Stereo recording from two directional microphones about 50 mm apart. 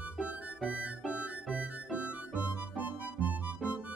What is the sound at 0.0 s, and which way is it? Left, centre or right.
Music, right.